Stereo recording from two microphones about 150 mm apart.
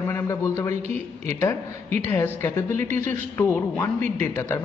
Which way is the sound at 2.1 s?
15° left (ahead or behind).